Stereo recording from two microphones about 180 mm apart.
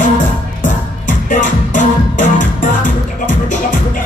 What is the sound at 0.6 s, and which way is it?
Music, 45° left (ahead or behind).